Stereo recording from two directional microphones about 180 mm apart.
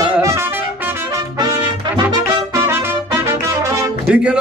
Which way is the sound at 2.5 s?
15° right (ahead or behind).